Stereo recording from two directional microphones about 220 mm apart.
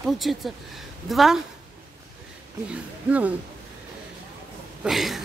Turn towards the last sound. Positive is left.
turn(degrees=0)  # may be behind; listen again after turning